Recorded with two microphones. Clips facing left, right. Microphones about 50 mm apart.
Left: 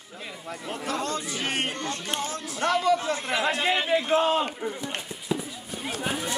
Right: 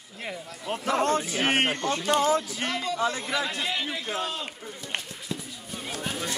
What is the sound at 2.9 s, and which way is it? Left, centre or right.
Speech, left.